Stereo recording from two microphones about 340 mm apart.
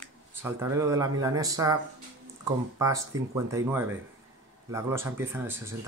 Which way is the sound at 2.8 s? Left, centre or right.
Centre.